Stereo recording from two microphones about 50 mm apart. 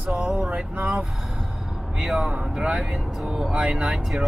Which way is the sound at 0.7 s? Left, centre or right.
Right.